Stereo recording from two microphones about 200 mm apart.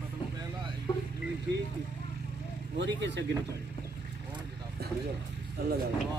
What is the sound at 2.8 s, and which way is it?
Speech, 65° right (ahead or behind).